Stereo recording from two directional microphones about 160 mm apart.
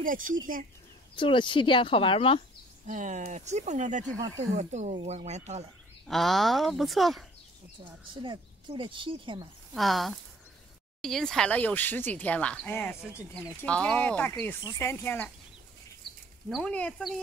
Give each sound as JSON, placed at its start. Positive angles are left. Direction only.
{"t": 0.0, "sound": "speech", "side_deg": -55}
{"t": 1.1, "sound": "speech", "side_deg": 30}
{"t": 2.9, "sound": "speech", "side_deg": -50}
{"t": 6.0, "sound": "speech", "side_deg": 0}
{"t": 7.8, "sound": "speech", "side_deg": -30}
{"t": 9.8, "sound": "speech", "side_deg": 0}
{"t": 16.4, "sound": "speech", "side_deg": 0}